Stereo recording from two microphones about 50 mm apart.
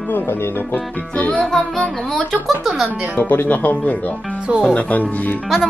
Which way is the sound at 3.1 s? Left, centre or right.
Left.